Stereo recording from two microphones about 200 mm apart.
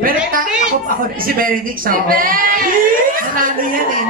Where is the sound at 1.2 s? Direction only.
45° right (ahead or behind).